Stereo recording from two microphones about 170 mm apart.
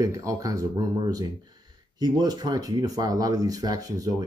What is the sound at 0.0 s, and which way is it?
Speech, 20° right (ahead or behind).